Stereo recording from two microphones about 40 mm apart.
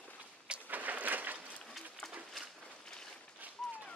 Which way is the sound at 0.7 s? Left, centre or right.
Right.